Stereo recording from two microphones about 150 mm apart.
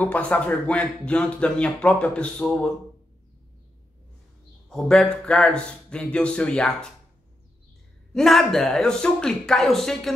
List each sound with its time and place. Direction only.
0.0 s speech: 10° left (ahead or behind)
4.6 s a man's voice: 5° left (ahead or behind)
8.1 s a man's voice: centre (ahead or behind)